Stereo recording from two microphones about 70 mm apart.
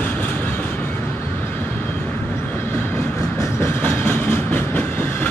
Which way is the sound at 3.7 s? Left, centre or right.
Left.